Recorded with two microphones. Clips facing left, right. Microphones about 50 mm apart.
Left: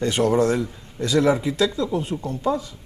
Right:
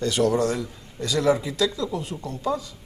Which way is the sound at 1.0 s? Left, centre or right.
Left.